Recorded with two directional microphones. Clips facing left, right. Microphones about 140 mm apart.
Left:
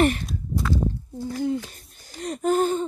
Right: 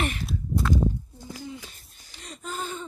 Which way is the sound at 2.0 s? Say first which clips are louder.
Left 15 dB; 50° left (ahead or behind).